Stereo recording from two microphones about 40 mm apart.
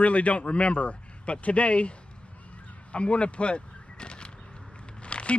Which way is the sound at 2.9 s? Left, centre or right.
Left.